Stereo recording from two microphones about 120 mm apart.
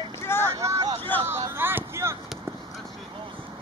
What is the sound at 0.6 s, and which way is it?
Vehicle, 25° right (ahead or behind).